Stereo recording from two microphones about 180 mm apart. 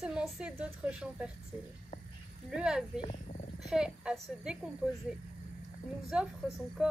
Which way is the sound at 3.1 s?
45° left (ahead or behind).